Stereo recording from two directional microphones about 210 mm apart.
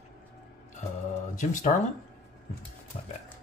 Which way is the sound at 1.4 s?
35° left (ahead or behind).